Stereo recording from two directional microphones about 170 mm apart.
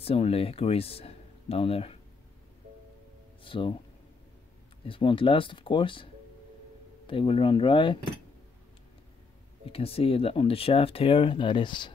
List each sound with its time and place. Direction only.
0.0 s speech: 35° left (ahead or behind)
3.4 s speech: 30° left (ahead or behind)
4.8 s speech: 30° left (ahead or behind)
7.1 s speech: 30° left (ahead or behind)
9.7 s speech: 35° left (ahead or behind)